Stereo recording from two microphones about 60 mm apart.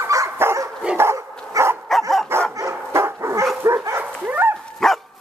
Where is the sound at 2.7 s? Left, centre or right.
Right.